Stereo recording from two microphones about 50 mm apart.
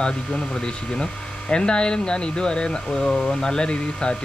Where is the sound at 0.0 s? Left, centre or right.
Centre.